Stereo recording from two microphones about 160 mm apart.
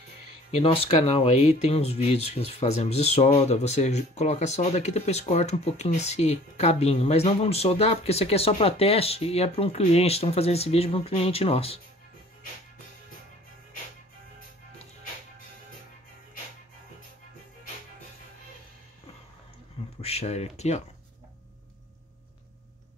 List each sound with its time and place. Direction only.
0.5 s speech: 35° left (ahead or behind)
20.0 s speech: 40° left (ahead or behind)